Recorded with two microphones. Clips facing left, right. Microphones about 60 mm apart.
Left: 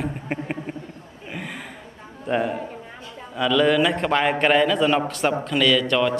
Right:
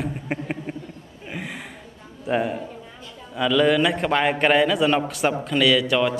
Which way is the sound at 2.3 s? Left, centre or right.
Centre.